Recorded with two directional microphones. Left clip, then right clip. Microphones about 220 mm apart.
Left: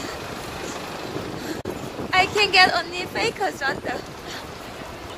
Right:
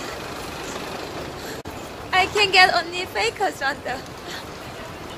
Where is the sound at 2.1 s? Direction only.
5° left (ahead or behind).